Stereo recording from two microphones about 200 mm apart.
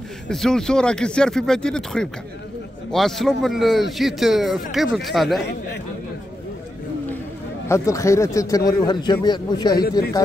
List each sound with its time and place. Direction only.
0.3 s speech: 5° left (ahead or behind)
7.6 s a man's voice: 15° left (ahead or behind)